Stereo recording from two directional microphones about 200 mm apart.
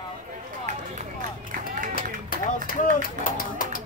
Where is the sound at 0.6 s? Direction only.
40° right (ahead or behind).